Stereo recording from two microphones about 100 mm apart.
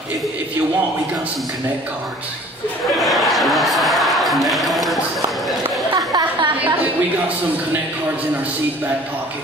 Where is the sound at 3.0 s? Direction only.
Centre (ahead or behind).